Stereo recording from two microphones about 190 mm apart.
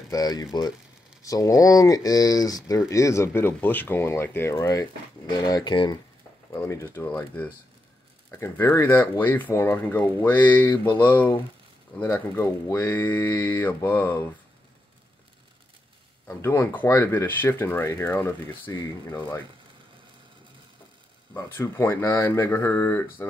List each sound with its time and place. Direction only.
0.1 s speech: 20° left (ahead or behind)
16.3 s speech: 15° left (ahead or behind)
21.3 s speech: 10° left (ahead or behind)